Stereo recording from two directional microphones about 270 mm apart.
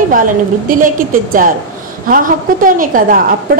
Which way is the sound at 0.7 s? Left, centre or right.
Right.